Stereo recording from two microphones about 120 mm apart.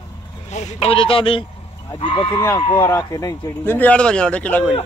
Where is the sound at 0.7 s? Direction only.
50° left (ahead or behind).